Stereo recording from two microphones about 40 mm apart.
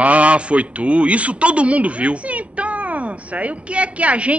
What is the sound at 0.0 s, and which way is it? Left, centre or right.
A man's voice, right.